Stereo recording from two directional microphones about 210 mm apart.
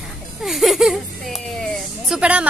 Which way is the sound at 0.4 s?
Centre (ahead or behind).